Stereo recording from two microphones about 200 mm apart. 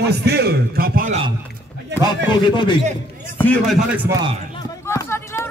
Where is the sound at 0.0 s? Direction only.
55° right (ahead or behind).